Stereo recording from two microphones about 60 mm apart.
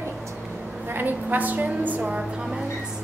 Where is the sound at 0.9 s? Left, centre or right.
Right.